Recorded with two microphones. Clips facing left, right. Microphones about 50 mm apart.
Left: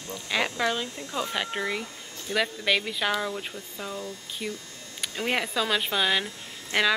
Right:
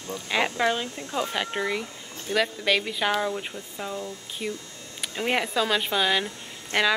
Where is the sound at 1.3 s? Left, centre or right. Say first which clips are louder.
Right 2 dB; centre.